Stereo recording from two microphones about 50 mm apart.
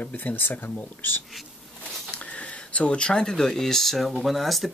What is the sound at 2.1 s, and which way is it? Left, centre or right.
Speech, left.